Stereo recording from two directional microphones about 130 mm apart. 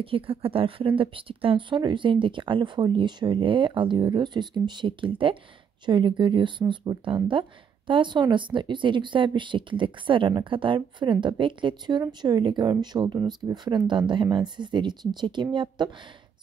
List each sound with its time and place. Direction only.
0.0 s a woman's voice: 45° right (ahead or behind)